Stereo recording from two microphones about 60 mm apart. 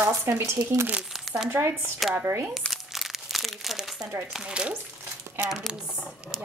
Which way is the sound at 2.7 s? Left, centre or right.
Centre.